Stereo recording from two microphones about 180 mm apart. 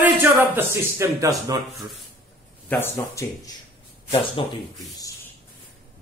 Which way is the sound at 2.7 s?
10° left (ahead or behind).